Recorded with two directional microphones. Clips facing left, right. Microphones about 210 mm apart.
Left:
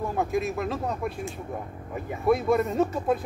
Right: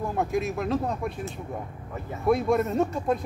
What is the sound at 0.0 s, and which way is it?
Speech, centre (ahead or behind).